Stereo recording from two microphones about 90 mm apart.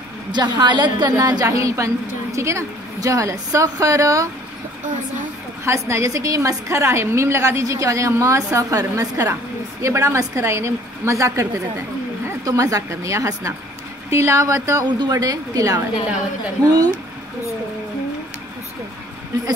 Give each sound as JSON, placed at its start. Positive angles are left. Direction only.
{"t": 0.3, "sound": "a woman's voice", "side_deg": -55}
{"t": 1.1, "sound": "a woman's voice", "side_deg": -35}
{"t": 5.7, "sound": "a woman's voice", "side_deg": -30}
{"t": 12.4, "sound": "a woman's voice", "side_deg": -40}
{"t": 14.9, "sound": "a woman's voice", "side_deg": -50}